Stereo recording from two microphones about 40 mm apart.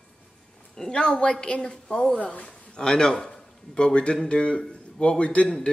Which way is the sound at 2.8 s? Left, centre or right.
Centre.